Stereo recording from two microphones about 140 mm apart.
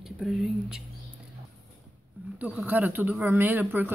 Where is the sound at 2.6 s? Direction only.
15° right (ahead or behind).